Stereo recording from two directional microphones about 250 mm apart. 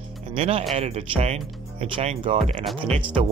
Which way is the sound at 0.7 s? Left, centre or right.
Right.